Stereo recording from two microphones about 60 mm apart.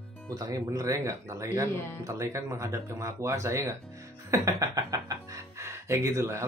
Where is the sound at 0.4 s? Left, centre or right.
Right.